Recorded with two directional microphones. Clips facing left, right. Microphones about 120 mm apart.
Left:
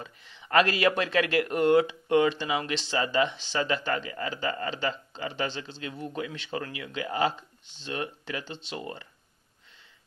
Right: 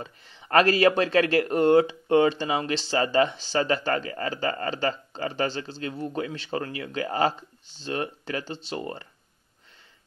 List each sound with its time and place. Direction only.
0.0 s speech: 35° right (ahead or behind)